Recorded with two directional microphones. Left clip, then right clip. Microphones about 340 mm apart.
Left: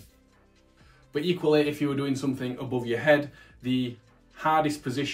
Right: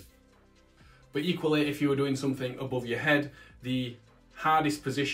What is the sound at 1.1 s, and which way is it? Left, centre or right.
Speech, centre.